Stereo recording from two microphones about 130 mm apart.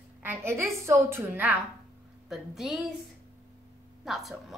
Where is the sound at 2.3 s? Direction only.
Centre (ahead or behind).